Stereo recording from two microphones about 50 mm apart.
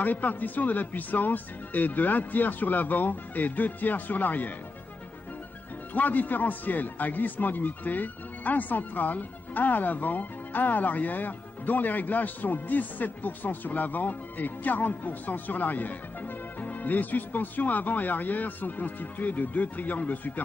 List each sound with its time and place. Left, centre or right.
0.0 s speech: left
5.9 s speech: left